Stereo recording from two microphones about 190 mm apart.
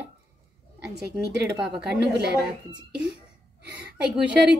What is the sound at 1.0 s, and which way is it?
Speech, 60° right (ahead or behind).